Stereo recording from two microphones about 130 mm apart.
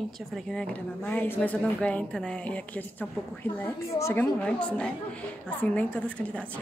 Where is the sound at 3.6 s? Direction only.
20° left (ahead or behind).